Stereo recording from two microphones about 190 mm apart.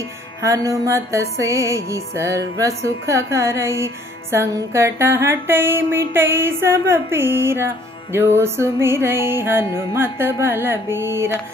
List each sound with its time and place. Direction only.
0.4 s music: 15° right (ahead or behind)